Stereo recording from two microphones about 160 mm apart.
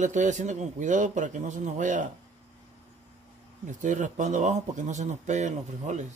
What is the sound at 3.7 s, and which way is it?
Speech, 50° right (ahead or behind).